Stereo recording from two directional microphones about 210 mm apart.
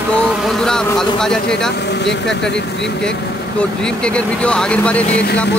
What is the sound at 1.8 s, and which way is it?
Speech, 55° left (ahead or behind).